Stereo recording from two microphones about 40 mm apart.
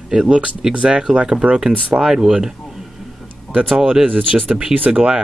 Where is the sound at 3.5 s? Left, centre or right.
Right.